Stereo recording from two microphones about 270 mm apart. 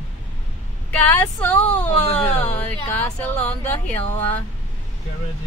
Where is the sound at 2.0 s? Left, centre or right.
Left.